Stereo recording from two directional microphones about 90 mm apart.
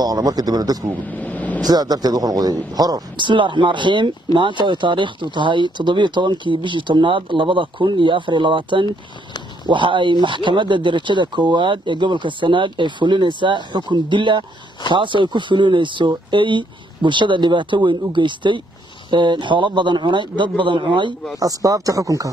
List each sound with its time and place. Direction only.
0.0 s a man's voice: 45° right (ahead or behind)
1.1 s vehicle: 20° left (ahead or behind)
1.6 s a man's voice: 50° right (ahead or behind)
3.3 s speech: 65° right (ahead or behind)
21.4 s speech: 40° right (ahead or behind)